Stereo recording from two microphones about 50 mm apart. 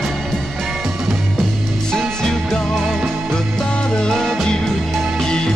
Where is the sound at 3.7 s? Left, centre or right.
Centre.